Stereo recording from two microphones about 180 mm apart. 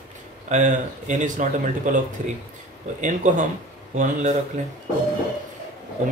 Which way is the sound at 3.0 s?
45° right (ahead or behind).